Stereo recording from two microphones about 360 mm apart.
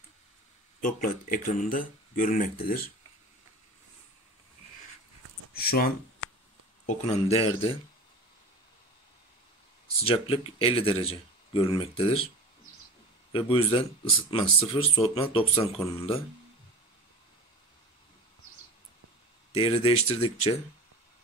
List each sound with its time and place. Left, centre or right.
0.7 s speech: left
5.5 s speech: left
10.0 s speech: centre
13.3 s speech: centre
19.5 s speech: centre